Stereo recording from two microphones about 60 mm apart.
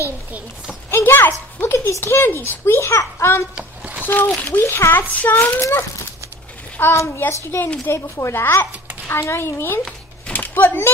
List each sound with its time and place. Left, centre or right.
0.8 s a sound: left
1.9 s a child's voice: left
4.0 s a child's voice: left
4.7 s a child's voice: left
5.1 s a child's voice: left
5.6 s a child's voice: left
10.3 s a sound: left